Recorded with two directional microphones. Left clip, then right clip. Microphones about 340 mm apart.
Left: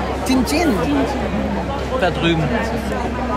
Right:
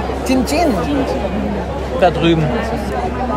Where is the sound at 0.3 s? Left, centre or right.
Centre.